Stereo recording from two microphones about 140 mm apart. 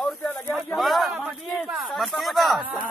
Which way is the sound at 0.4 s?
Centre (ahead or behind).